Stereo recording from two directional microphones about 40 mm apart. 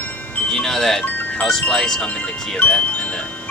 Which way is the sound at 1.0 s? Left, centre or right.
Left.